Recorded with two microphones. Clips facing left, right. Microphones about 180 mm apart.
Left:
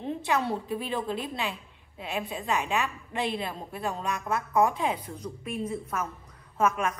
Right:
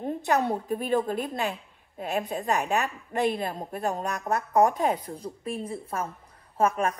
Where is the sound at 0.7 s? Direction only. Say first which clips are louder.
Right 5 dB; 45° right (ahead or behind).